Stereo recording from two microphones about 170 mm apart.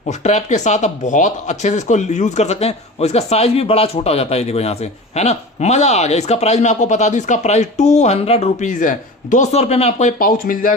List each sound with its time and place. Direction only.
0.2 s speech: 45° left (ahead or behind)